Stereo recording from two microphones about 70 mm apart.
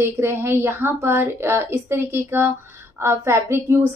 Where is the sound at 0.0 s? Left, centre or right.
Right.